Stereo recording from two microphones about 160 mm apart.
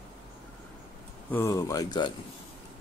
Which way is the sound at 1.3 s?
15° left (ahead or behind).